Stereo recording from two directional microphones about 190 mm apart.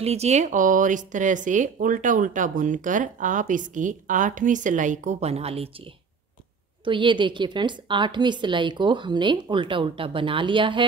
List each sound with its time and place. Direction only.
0.0 s speech: 35° right (ahead or behind)
6.8 s a woman's voice: 25° right (ahead or behind)